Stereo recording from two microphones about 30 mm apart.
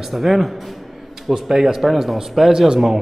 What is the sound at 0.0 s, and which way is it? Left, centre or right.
A man's voice, centre.